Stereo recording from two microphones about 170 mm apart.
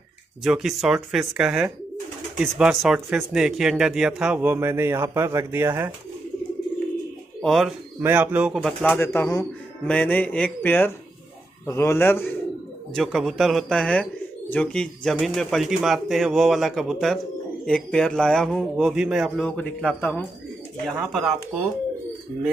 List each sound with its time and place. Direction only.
0.4 s speech: 5° right (ahead or behind)
7.4 s speech: centre (ahead or behind)
8.0 s speech: 10° right (ahead or behind)
8.6 s speech: 10° left (ahead or behind)
12.9 s speech: centre (ahead or behind)